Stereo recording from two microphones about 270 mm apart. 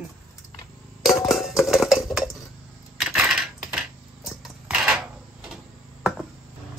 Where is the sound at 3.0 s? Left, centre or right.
Centre.